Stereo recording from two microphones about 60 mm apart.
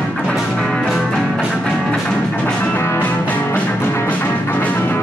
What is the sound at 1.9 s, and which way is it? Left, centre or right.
Music, left.